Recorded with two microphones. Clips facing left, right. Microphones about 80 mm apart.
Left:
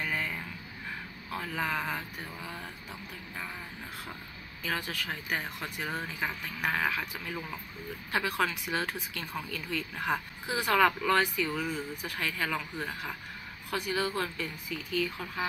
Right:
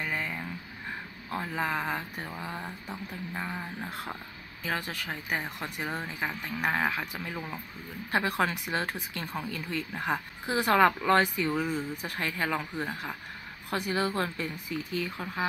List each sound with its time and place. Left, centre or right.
0.0 s a sound: centre
1.3 s speech: right
4.6 s speech: right
10.4 s speech: right